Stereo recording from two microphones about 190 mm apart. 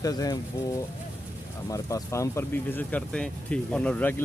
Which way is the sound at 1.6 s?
20° left (ahead or behind).